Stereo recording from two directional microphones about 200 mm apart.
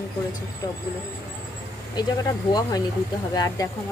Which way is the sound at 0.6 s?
20° left (ahead or behind).